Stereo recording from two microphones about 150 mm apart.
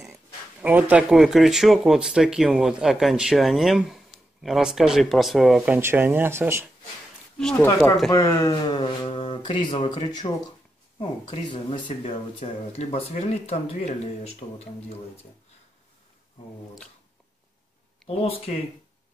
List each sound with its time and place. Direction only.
0.0 s speech: 15° right (ahead or behind)
5.6 s speech: 15° right (ahead or behind)
7.5 s speech: 15° left (ahead or behind); by 14.3 s 45° left (ahead or behind)
18.0 s a sound: centre (ahead or behind)